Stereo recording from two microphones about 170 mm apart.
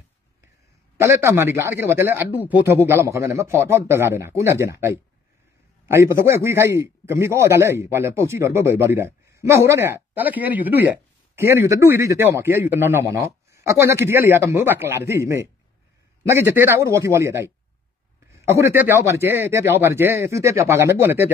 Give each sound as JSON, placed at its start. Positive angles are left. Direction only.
{"t": 0.9, "sound": "a man's voice", "side_deg": -15}